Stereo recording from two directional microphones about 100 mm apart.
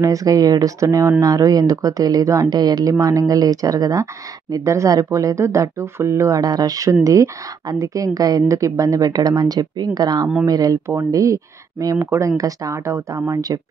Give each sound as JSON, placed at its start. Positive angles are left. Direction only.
{"t": 0.0, "sound": "a woman's voice", "side_deg": -35}
{"t": 2.5, "sound": "a woman's voice", "side_deg": -40}